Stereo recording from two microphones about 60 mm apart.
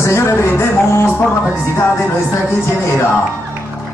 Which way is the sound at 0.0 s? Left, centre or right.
Left.